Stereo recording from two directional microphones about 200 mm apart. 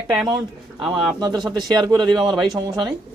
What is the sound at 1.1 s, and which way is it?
Speech, 20° right (ahead or behind).